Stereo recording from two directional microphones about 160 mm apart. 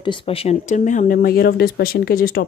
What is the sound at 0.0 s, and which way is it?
Speech, 35° left (ahead or behind).